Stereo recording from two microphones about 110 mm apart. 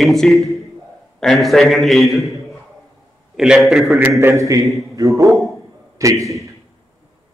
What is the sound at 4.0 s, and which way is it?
A man's voice, 25° right (ahead or behind).